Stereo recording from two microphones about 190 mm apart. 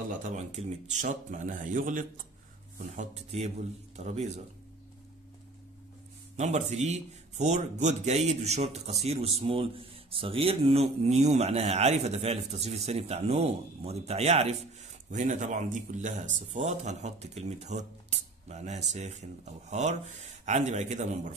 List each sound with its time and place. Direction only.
0.2 s a man's voice: 40° right (ahead or behind)
3.0 s a man's voice: 35° right (ahead or behind)
6.3 s a man's voice: 35° right (ahead or behind)